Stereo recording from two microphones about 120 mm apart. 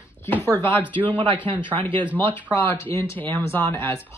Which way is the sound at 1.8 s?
45° right (ahead or behind).